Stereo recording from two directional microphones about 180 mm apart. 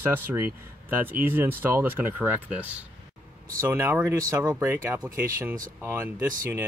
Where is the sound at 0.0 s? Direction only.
10° right (ahead or behind).